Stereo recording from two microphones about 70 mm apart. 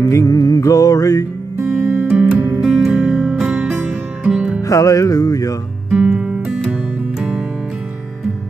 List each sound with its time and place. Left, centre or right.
0.0 s music: left
1.9 s music: right
2.6 s music: centre
4.6 s music: left
5.9 s music: centre